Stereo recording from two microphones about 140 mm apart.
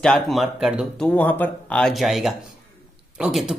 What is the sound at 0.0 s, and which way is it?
Speech, centre (ahead or behind).